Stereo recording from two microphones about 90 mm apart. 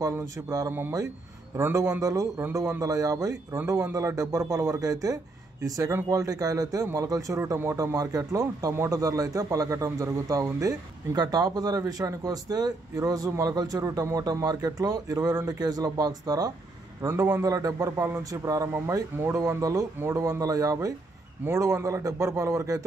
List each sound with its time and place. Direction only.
0.0 s speech: 40° right (ahead or behind)
0.7 s speech: 25° right (ahead or behind)
2.0 s a man's voice: 40° right (ahead or behind)
17.0 s speech: 35° right (ahead or behind)
18.7 s speech: 30° right (ahead or behind)
19.3 s speech: 40° right (ahead or behind)
21.5 s speech: 30° right (ahead or behind)